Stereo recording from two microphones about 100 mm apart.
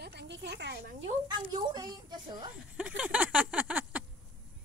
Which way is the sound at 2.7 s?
10° right (ahead or behind).